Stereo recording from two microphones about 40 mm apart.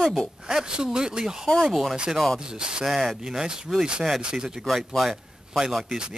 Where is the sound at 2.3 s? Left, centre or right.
Centre.